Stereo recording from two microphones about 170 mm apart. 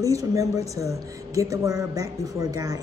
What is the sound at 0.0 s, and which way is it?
A woman's voice, 20° right (ahead or behind).